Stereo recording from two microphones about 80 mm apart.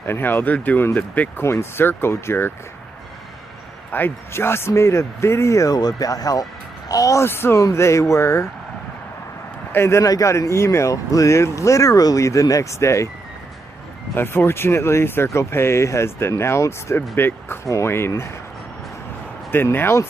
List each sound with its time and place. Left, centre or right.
0.0 s speech: left
1.4 s speech: left
3.9 s speech: left
7.2 s speech: left
9.7 s speech: left
14.1 s speech: left
19.5 s speech: left